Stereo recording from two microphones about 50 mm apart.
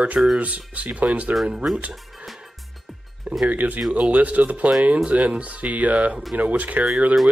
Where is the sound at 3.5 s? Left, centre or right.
Right.